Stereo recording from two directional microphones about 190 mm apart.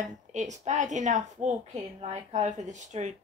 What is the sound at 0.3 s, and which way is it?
Speech, 40° right (ahead or behind).